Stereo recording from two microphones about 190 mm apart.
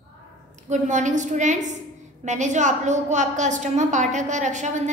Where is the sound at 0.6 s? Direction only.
40° right (ahead or behind).